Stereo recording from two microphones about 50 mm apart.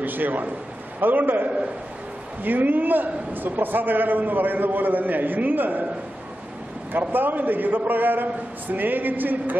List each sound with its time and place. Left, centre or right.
0.0 s a man's voice: right
7.0 s a man's voice: right